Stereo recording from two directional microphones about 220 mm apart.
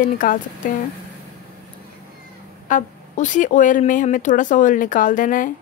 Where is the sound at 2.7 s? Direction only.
35° left (ahead or behind).